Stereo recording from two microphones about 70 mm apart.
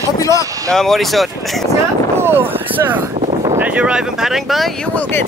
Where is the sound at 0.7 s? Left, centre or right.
Centre.